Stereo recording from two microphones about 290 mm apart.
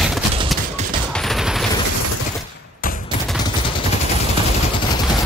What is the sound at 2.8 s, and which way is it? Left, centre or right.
Fusillade, left.